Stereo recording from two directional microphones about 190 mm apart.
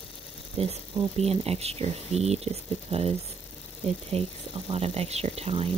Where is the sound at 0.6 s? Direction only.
30° right (ahead or behind).